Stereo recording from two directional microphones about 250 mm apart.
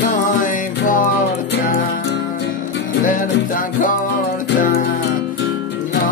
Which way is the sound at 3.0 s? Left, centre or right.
Left.